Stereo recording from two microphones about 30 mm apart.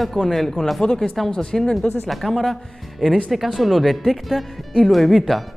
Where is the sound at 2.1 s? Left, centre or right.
Centre.